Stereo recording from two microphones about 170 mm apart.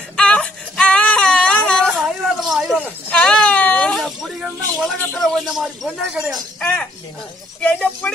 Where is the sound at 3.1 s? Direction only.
5° left (ahead or behind).